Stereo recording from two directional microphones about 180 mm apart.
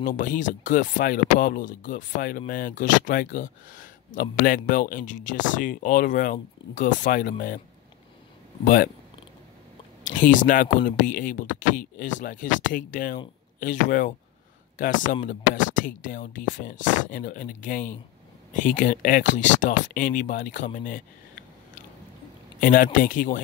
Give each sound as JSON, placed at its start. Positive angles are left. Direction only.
{"t": 0.0, "sound": "speech", "side_deg": 50}
{"t": 10.0, "sound": "speech", "side_deg": 45}
{"t": 22.6, "sound": "speech", "side_deg": 50}